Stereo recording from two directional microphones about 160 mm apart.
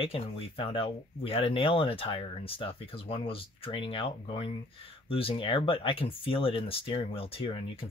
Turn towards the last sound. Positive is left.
turn(degrees=35)  # may be behind; listen again after turning